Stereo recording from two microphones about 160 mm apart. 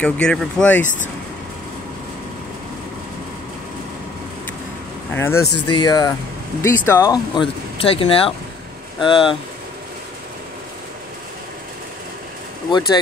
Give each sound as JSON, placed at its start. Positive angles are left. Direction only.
{"t": 0.0, "sound": "speech", "side_deg": 5}
{"t": 0.8, "sound": "speech", "side_deg": 50}
{"t": 5.1, "sound": "speech", "side_deg": 15}
{"t": 5.7, "sound": "speech", "side_deg": 25}
{"t": 7.3, "sound": "speech", "side_deg": 35}
{"t": 12.7, "sound": "speech", "side_deg": 30}